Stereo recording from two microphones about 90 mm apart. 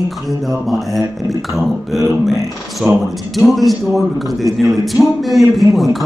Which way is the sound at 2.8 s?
15° right (ahead or behind).